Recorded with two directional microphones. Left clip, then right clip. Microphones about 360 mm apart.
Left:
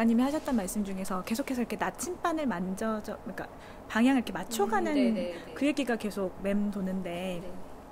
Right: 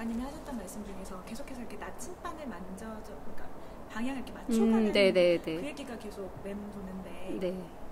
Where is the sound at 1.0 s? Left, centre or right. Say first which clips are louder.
Left 10 dB; left.